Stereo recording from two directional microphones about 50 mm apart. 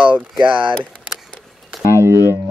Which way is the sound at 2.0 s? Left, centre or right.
Right.